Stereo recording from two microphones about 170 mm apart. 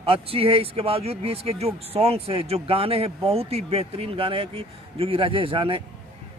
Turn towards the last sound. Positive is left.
turn(degrees=-30)  # may be behind; listen again after turning